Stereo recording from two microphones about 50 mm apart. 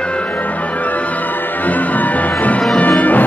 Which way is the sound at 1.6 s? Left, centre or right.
Left.